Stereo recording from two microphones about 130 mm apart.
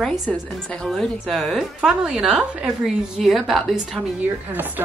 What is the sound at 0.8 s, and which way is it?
A woman's voice, 5° left (ahead or behind).